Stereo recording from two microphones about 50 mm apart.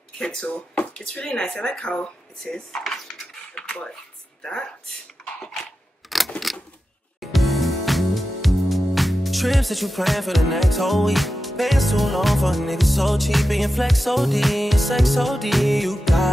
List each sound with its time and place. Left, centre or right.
0.2 s speech: centre
2.4 s speech: centre
3.5 s a sound: centre
5.4 s scissors: centre
7.2 s music: centre